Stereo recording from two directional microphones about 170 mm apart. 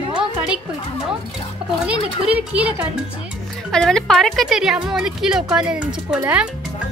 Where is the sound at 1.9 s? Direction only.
10° right (ahead or behind).